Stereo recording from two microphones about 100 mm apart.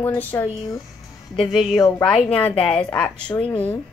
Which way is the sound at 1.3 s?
Centre (ahead or behind).